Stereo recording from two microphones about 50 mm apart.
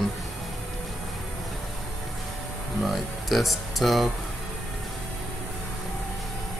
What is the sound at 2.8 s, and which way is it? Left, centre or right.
Speech, centre.